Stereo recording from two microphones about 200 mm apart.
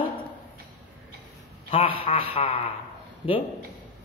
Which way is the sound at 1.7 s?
25° left (ahead or behind).